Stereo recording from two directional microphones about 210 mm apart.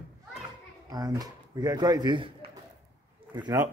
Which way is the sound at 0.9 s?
20° right (ahead or behind).